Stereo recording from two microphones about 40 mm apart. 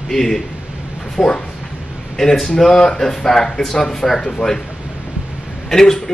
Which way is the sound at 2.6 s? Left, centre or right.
Centre.